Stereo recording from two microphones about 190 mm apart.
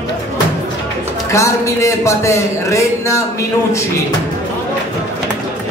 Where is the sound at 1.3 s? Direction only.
15° left (ahead or behind).